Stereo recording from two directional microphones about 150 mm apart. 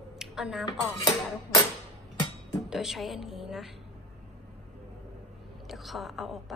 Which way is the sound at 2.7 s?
Centre (ahead or behind).